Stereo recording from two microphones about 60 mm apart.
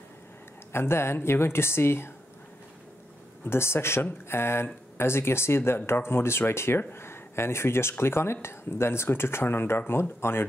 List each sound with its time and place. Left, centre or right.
0.7 s speech: left
3.4 s speech: left